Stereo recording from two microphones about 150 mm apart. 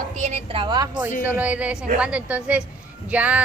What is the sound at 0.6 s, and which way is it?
Speech, 25° right (ahead or behind).